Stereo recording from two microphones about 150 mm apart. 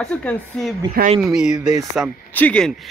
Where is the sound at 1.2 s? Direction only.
5° right (ahead or behind).